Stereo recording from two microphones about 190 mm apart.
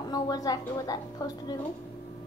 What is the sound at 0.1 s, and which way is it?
A woman's voice, 20° left (ahead or behind).